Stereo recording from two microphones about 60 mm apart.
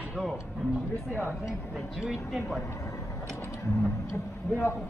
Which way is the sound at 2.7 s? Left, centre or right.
Left.